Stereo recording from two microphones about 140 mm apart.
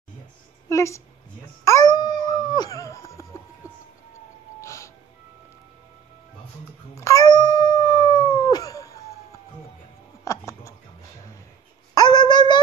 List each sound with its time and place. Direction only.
0.7 s a woman's voice: 20° left (ahead or behind)
1.6 s dog: 25° left (ahead or behind)
4.6 s music: 20° left (ahead or behind)
7.0 s howl: 25° left (ahead or behind)
10.2 s a sound: 20° left (ahead or behind)
11.9 s a sound: 30° left (ahead or behind)